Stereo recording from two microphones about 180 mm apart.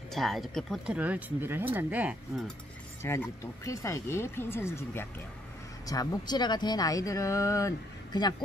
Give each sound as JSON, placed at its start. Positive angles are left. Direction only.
{"t": 0.1, "sound": "speech", "side_deg": 0}
{"t": 3.0, "sound": "speech", "side_deg": 15}